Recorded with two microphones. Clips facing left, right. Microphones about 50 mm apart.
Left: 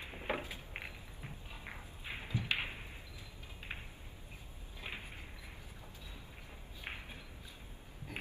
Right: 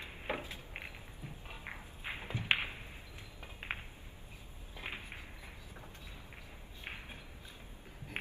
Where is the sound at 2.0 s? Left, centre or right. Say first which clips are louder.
Even; right.